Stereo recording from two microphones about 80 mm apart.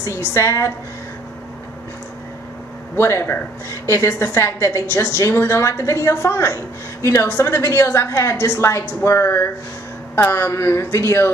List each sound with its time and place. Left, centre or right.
0.0 s a woman's voice: left
3.0 s a woman's voice: left